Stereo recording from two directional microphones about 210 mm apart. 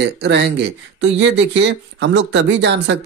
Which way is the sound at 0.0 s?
55° right (ahead or behind).